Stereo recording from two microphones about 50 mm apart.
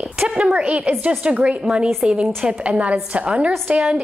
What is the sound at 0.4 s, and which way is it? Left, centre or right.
A woman's voice, right.